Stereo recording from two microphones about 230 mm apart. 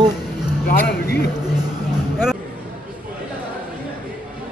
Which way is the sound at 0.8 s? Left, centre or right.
Left.